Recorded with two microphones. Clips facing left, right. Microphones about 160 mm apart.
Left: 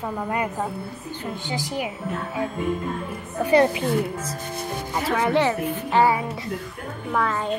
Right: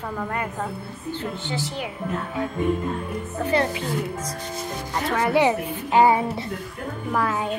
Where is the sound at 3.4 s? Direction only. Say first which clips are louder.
Left 5 dB; 15° left (ahead or behind).